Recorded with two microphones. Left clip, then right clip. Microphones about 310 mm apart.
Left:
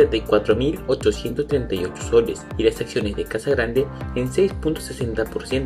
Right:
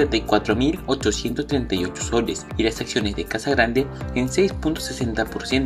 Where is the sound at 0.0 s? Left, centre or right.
Centre.